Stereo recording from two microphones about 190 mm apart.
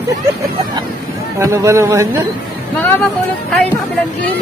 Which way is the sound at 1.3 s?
15° right (ahead or behind).